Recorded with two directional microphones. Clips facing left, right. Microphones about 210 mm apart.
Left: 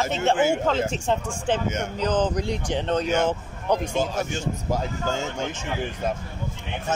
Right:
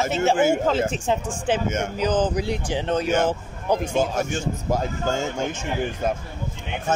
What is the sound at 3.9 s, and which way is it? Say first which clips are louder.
Speech: right 3 dB; 50° right (ahead or behind).